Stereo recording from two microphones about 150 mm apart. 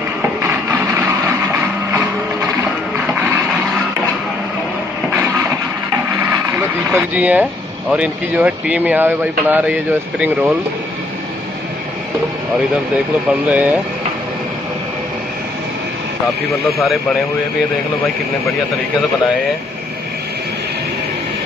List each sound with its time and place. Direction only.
0.4 s a sound: 20° right (ahead or behind)
6.9 s speech: 10° right (ahead or behind)
13.3 s speech: 10° right (ahead or behind)